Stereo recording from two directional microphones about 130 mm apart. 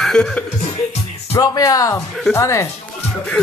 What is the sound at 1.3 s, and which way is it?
Speech, 25° left (ahead or behind).